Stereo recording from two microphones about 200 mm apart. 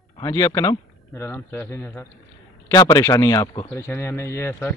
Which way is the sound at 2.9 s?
15° left (ahead or behind).